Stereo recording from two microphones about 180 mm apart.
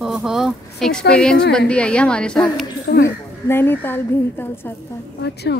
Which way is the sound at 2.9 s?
60° left (ahead or behind).